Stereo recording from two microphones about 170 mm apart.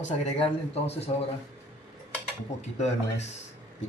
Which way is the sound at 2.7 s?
40° left (ahead or behind).